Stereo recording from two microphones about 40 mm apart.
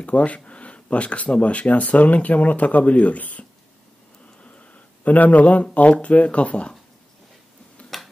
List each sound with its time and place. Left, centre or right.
0.0 s speech: left
5.0 s speech: left